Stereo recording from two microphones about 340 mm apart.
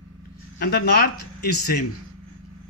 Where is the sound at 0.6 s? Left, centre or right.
Left.